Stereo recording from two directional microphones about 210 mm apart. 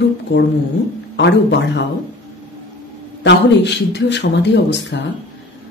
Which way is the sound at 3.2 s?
55° left (ahead or behind).